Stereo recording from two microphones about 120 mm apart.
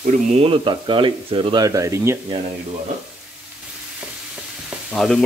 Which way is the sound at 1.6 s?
25° right (ahead or behind).